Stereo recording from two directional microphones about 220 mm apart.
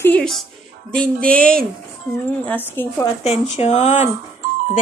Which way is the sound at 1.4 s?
40° right (ahead or behind).